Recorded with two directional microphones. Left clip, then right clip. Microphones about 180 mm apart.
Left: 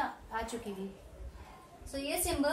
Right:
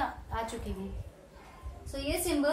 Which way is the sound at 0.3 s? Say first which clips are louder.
Even; 15° right (ahead or behind).